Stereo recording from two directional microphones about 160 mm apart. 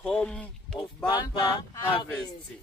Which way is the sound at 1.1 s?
30° left (ahead or behind).